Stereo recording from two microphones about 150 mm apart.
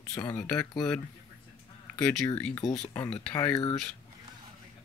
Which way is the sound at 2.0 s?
20° left (ahead or behind).